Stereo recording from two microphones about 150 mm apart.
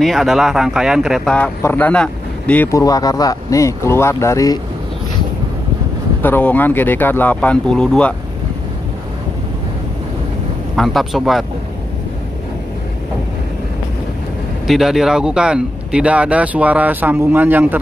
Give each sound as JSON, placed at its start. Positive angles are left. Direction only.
{"t": 0.0, "sound": "speech", "side_deg": 0}
{"t": 2.8, "sound": "speech", "side_deg": 25}
{"t": 6.2, "sound": "speech", "side_deg": 10}
{"t": 10.8, "sound": "speech", "side_deg": 0}
{"t": 14.7, "sound": "speech", "side_deg": 0}